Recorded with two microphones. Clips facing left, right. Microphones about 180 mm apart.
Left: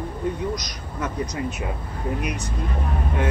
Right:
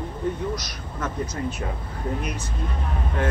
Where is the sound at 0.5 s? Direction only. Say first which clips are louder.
Left 1 dB; 15° left (ahead or behind).